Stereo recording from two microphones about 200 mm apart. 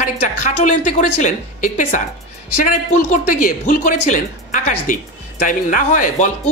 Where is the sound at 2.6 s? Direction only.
40° left (ahead or behind).